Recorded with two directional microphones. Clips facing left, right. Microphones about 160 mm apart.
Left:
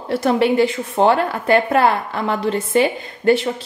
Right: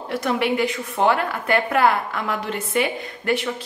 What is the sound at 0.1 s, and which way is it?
A woman's voice, 30° left (ahead or behind).